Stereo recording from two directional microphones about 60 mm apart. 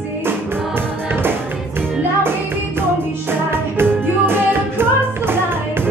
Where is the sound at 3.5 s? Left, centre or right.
Right.